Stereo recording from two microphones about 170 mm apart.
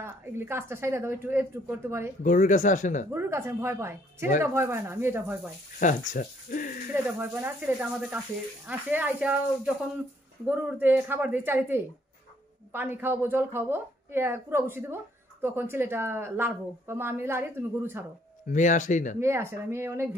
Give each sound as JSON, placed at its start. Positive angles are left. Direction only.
{"t": 0.0, "sound": "speech", "side_deg": -15}
{"t": 2.2, "sound": "speech", "side_deg": 50}
{"t": 3.1, "sound": "speech", "side_deg": -15}
{"t": 5.8, "sound": "speech", "side_deg": 50}
{"t": 6.9, "sound": "speech", "side_deg": -10}
{"t": 10.4, "sound": "speech", "side_deg": -10}
{"t": 18.5, "sound": "speech", "side_deg": 50}
{"t": 19.1, "sound": "speech", "side_deg": -15}